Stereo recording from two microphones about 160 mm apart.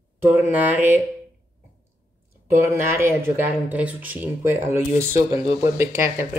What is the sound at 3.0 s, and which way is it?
Speech, 15° right (ahead or behind).